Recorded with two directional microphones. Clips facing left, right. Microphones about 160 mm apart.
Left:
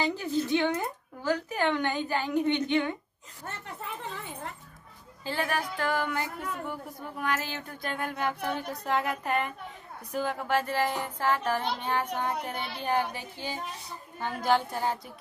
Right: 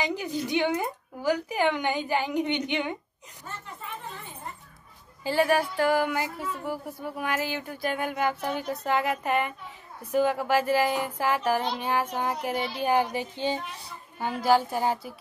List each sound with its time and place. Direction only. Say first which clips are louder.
0.0 s a woman's voice: left 1 dB; 15° right (ahead or behind)
3.4 s speech: left 1 dB; 70° left (ahead or behind); by 4.6 s 85° left
5.2 s a woman's voice: right 7 dB; 5° right (ahead or behind)
14.2 s a woman's voice: right 4 dB; 5° right (ahead or behind)